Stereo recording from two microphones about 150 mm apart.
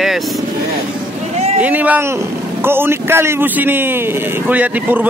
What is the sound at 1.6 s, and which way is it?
A man's voice, 10° right (ahead or behind).